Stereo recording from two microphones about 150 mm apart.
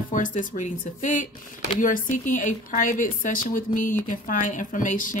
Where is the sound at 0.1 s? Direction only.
60° left (ahead or behind).